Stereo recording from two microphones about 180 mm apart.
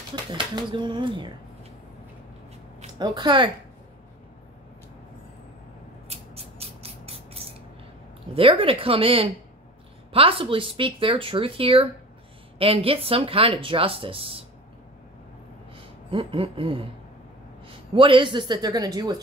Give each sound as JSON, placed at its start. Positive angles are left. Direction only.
{"t": 0.1, "sound": "speech", "side_deg": -25}
{"t": 3.0, "sound": "speech", "side_deg": -25}
{"t": 6.0, "sound": "a sound", "side_deg": -35}
{"t": 8.4, "sound": "speech", "side_deg": -30}
{"t": 15.7, "sound": "speech", "side_deg": -30}
{"t": 17.9, "sound": "speech", "side_deg": -30}